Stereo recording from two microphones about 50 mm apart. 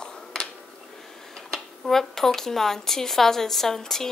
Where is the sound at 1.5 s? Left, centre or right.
Centre.